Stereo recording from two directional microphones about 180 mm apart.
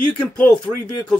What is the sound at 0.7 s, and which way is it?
Speech, centre (ahead or behind).